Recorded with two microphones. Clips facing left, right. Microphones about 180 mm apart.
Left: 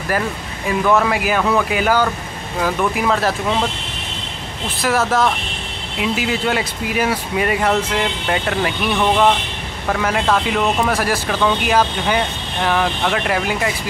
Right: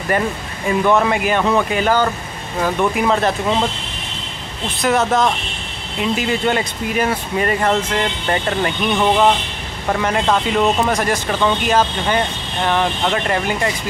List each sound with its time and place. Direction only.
0.7 s speech: centre (ahead or behind)
4.8 s speech: 5° left (ahead or behind)
8.9 s speech: 5° right (ahead or behind)